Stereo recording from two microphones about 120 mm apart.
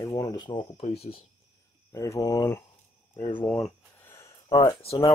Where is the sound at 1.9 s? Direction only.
25° left (ahead or behind).